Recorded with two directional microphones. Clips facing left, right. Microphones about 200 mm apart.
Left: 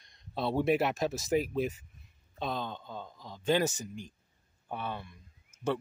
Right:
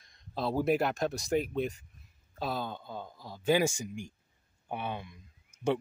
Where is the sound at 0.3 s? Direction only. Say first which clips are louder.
Even; centre (ahead or behind).